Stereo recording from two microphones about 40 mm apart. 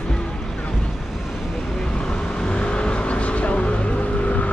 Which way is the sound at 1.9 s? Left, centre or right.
Left.